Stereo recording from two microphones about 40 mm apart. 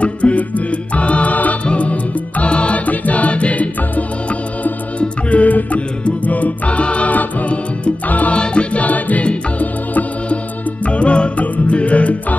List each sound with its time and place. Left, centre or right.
0.0 s music: left
8.4 s music: left
8.8 s music: left